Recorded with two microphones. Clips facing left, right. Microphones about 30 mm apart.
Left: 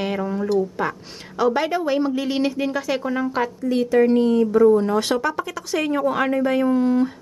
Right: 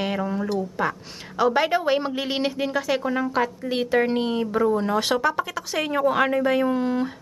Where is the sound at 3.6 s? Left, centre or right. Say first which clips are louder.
Left 8 dB; right.